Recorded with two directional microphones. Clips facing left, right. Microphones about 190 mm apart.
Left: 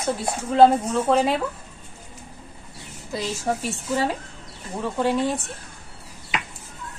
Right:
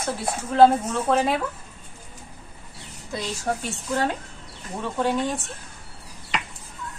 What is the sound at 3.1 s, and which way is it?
Speech, 5° left (ahead or behind).